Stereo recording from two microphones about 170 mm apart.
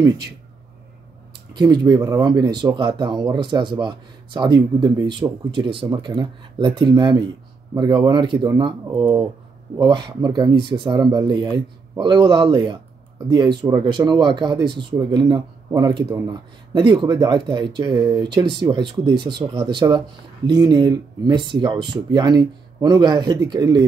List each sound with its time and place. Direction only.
1.5 s speech: 25° right (ahead or behind)